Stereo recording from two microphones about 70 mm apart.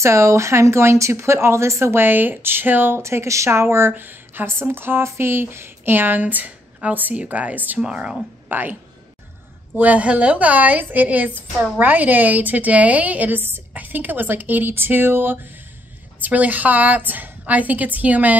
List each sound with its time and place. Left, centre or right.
0.0 s speech: right
3.0 s speech: right; by 8.2 s centre
8.5 s a woman's voice: right
9.8 s speech: right